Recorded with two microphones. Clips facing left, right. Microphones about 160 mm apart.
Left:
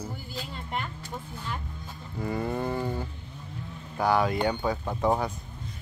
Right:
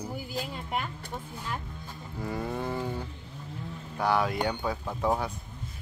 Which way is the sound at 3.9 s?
Centre (ahead or behind).